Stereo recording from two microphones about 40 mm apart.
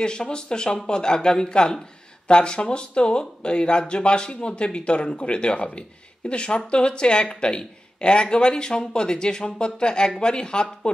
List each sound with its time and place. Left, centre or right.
0.0 s speech: left